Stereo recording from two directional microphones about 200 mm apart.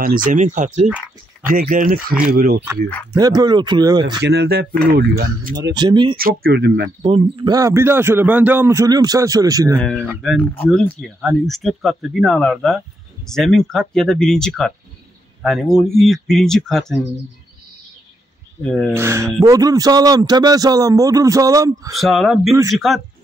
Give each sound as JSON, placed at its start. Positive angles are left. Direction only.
{"t": 0.0, "sound": "speech", "side_deg": -45}
{"t": 3.1, "sound": "speech", "side_deg": -20}
{"t": 4.2, "sound": "speech", "side_deg": -55}
{"t": 5.8, "sound": "speech", "side_deg": -20}
{"t": 6.1, "sound": "speech", "side_deg": -50}
{"t": 7.0, "sound": "speech", "side_deg": -25}
{"t": 9.8, "sound": "speech", "side_deg": 5}
{"t": 18.6, "sound": "speech", "side_deg": 5}
{"t": 18.9, "sound": "speech", "side_deg": -15}
{"t": 21.9, "sound": "speech", "side_deg": 0}